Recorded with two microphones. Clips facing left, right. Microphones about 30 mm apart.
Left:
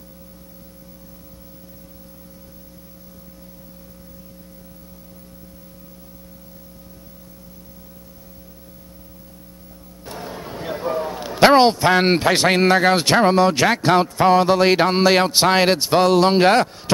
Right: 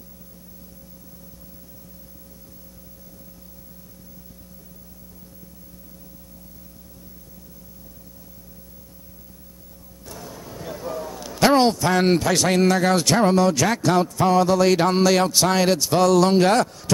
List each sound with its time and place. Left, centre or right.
10.0 s a man's voice: left